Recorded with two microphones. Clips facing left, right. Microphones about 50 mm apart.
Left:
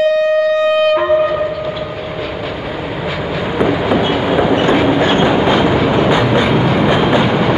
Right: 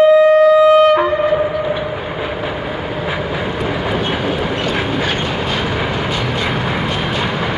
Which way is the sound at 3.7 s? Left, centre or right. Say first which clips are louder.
Left 5 dB; centre.